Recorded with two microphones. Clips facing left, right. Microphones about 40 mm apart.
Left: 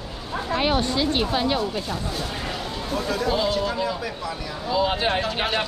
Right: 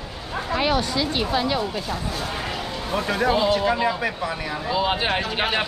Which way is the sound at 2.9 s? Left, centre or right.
Right.